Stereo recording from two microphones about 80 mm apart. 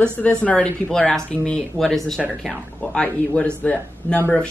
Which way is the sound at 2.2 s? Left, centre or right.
Centre.